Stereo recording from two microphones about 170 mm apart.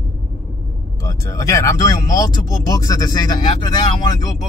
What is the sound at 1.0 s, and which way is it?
Speech, 20° left (ahead or behind).